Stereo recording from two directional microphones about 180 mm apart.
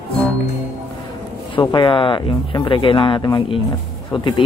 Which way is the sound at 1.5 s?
30° left (ahead or behind).